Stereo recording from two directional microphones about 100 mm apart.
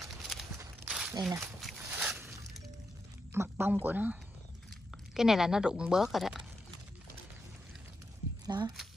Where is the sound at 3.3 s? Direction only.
20° right (ahead or behind).